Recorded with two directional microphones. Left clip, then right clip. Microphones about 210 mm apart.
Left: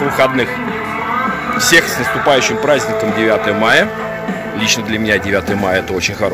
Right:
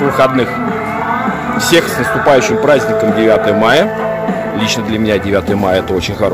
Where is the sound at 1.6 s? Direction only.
Centre (ahead or behind).